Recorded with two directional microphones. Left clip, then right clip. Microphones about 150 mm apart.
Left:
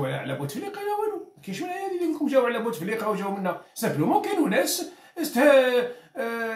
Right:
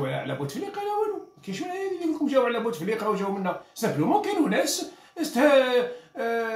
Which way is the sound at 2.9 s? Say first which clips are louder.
Right 1 dB; 15° left (ahead or behind).